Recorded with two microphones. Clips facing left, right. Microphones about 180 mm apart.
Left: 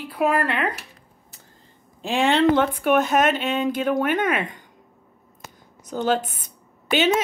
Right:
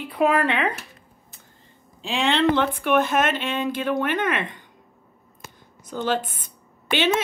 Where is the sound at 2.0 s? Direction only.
50° left (ahead or behind).